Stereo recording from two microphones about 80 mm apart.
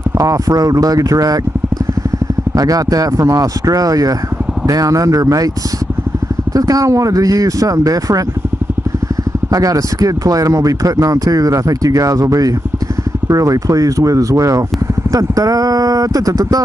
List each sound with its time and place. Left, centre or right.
0.2 s speech: right
2.5 s speech: right
6.5 s speech: right
9.5 s speech: right